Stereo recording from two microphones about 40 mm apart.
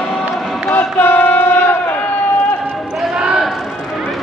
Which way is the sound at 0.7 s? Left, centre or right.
Left.